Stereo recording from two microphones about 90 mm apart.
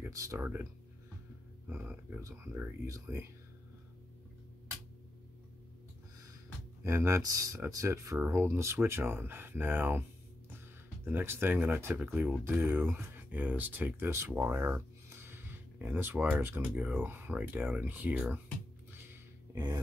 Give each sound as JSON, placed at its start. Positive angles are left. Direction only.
{"t": 0.1, "sound": "speech", "side_deg": -40}
{"t": 0.4, "sound": "speech", "side_deg": -25}
{"t": 1.7, "sound": "speech", "side_deg": -20}
{"t": 2.2, "sound": "speech", "side_deg": -35}
{"t": 6.8, "sound": "speech", "side_deg": -35}
{"t": 11.1, "sound": "speech", "side_deg": -25}
{"t": 19.5, "sound": "speech", "side_deg": -45}